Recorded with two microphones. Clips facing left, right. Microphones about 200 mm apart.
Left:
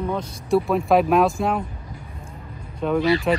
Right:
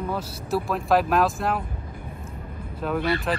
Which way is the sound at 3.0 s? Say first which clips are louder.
Left 6 dB; 55° right (ahead or behind).